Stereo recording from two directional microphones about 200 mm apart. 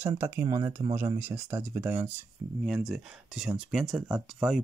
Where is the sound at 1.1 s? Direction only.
10° right (ahead or behind).